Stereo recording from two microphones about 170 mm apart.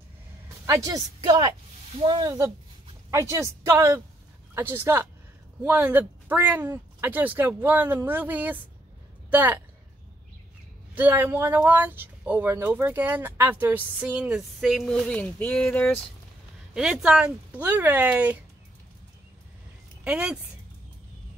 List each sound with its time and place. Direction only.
0.7 s a woman's voice: 20° right (ahead or behind)
11.0 s speech: 10° right (ahead or behind); by 16.0 s 10° left (ahead or behind)
16.7 s speech: 5° right (ahead or behind)
20.0 s speech: 5° right (ahead or behind)